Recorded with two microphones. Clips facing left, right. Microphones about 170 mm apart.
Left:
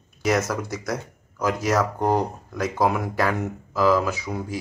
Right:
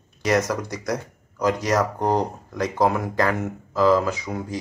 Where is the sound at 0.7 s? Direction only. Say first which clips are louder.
Right 1 dB; 15° right (ahead or behind).